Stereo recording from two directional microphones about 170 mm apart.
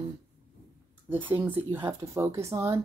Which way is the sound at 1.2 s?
30° right (ahead or behind).